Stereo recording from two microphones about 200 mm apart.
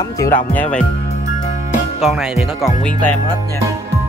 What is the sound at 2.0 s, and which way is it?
Speech, centre (ahead or behind).